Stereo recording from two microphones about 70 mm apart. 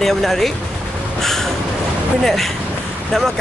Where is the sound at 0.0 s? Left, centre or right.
Centre.